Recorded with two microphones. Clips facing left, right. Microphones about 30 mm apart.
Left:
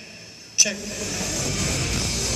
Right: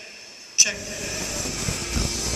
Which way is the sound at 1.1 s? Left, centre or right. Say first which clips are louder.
Left 4 dB; left.